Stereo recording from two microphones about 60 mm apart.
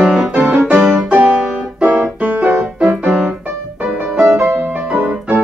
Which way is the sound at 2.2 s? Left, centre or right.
Right.